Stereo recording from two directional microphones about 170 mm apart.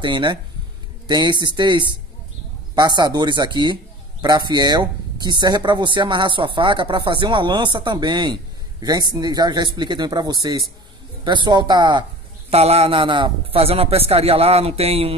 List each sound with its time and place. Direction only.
0.0 s speech: 30° right (ahead or behind)
12.5 s a man's voice: 35° right (ahead or behind)